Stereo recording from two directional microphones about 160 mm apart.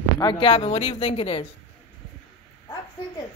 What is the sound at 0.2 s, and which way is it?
Speech, 30° left (ahead or behind).